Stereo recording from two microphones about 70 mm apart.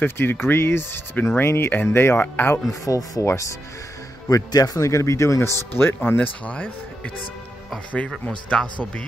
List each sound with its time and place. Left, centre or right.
0.0 s speech: left
2.7 s speech: left
4.3 s speech: left
6.1 s speech: centre
8.3 s a man's voice: centre